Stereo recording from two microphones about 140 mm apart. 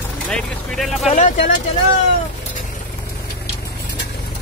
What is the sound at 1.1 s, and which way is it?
Speech, 60° left (ahead or behind).